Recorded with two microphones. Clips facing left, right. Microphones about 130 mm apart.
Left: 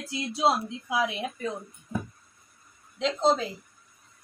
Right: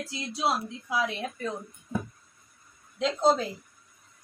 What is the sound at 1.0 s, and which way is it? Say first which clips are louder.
Speech: left 1 dB; 10° left (ahead or behind).